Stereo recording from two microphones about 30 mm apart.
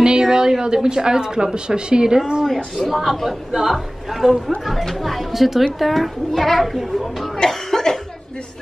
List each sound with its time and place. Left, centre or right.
0.0 s a sound: right
0.8 s a woman's voice: right
2.4 s a child's voice: centre
7.3 s cough: centre